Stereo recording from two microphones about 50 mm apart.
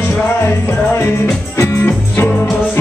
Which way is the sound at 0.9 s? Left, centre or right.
Left.